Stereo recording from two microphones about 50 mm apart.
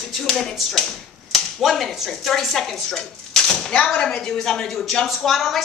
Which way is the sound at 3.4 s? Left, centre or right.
Centre.